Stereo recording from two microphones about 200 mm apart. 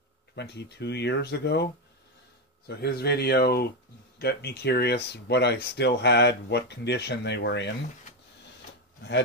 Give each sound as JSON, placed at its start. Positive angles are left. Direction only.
{"t": 0.4, "sound": "speech", "side_deg": 60}